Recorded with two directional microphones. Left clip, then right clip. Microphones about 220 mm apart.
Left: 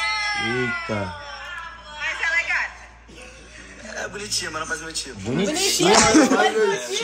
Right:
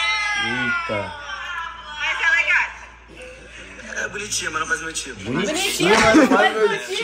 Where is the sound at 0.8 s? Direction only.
40° left (ahead or behind).